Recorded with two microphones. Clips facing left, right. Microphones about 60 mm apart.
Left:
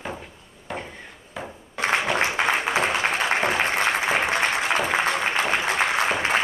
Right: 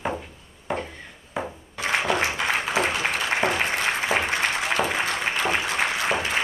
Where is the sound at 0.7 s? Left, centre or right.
Centre.